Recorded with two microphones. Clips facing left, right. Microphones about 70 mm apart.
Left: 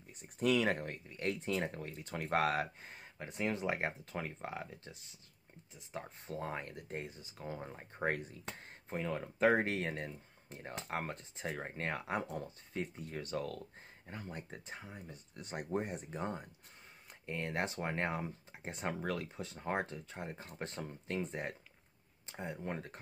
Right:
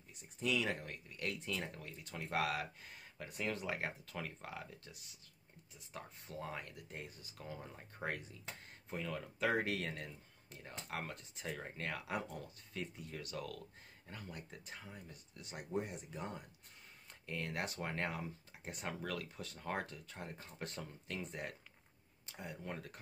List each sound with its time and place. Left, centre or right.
0.2 s speech: left
1.0 s speech: left
15.3 s speech: left